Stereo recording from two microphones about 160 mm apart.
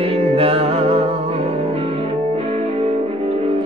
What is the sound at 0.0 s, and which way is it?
Music, 40° right (ahead or behind).